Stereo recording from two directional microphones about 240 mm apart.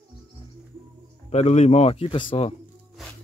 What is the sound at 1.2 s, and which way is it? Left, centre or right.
Speech, left.